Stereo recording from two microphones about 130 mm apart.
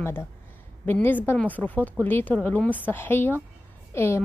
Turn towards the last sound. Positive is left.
turn(degrees=20)  # may be behind; listen again after turning